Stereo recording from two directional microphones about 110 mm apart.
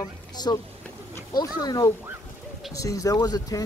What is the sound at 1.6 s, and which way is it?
Speech, 35° left (ahead or behind).